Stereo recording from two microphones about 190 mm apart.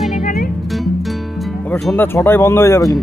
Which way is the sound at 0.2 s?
40° left (ahead or behind).